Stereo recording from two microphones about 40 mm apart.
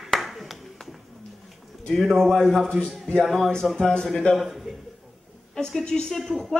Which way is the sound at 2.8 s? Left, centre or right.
Left.